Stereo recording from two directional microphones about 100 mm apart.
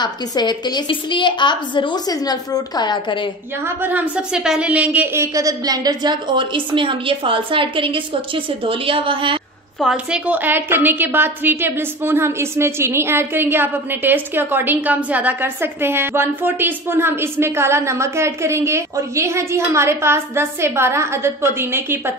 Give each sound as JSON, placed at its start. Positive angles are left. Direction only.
{"t": 0.0, "sound": "a woman's voice", "side_deg": 45}
{"t": 3.6, "sound": "a woman's voice", "side_deg": -20}
{"t": 6.3, "sound": "a woman's voice", "side_deg": -55}
{"t": 9.8, "sound": "a woman's voice", "side_deg": -5}
{"t": 10.2, "sound": "a woman's voice", "side_deg": -15}